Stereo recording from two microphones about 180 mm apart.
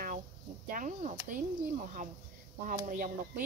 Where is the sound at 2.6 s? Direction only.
45° right (ahead or behind).